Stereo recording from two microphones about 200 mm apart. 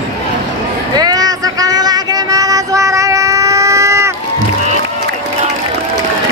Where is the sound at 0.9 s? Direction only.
20° right (ahead or behind).